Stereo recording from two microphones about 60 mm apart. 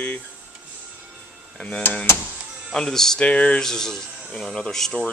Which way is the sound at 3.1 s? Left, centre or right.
Centre.